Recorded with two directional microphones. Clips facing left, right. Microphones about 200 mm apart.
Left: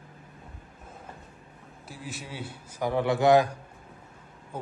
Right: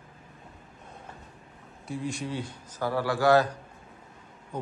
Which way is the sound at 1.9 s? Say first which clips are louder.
Right 8 dB; 5° left (ahead or behind).